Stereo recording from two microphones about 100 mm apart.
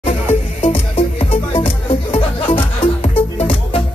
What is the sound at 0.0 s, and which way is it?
Music, 70° left (ahead or behind).